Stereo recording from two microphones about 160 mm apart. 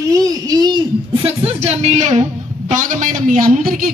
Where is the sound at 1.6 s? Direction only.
45° right (ahead or behind).